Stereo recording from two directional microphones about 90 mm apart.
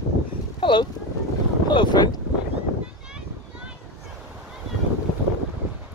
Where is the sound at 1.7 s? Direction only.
60° left (ahead or behind).